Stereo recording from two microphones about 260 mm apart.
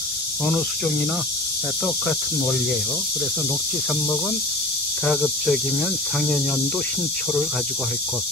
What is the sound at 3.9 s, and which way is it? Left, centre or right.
Cricket, centre.